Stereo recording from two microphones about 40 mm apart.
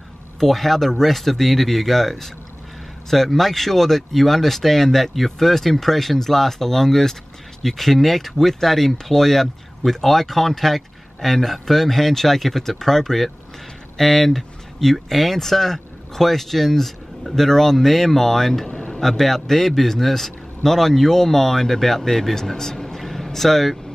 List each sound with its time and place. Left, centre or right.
0.4 s a man's voice: centre
18.7 s a sound: left
18.9 s a man's voice: centre